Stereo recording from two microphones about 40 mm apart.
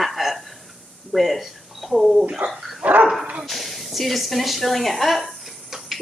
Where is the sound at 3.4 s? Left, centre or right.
Centre.